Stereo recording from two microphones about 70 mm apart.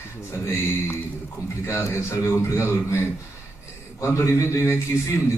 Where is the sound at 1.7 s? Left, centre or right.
Left.